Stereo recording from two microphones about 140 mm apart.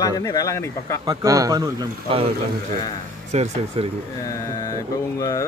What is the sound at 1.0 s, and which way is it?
Speech, 25° right (ahead or behind).